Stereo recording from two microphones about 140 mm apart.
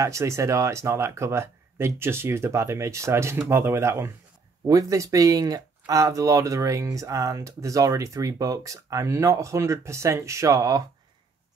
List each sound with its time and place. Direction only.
0.0 s speech: 20° right (ahead or behind)